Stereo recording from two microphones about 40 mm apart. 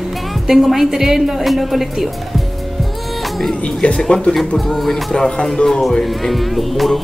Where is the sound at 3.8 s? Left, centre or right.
Left.